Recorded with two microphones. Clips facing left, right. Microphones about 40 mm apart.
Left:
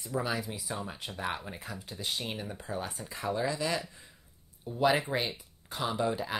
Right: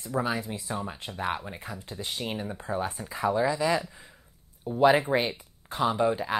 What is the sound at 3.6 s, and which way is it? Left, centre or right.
Speech, right.